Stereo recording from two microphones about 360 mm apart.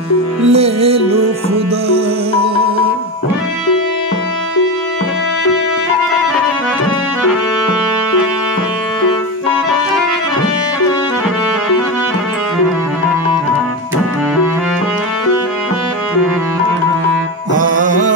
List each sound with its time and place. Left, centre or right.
0.5 s music: centre
17.7 s music: right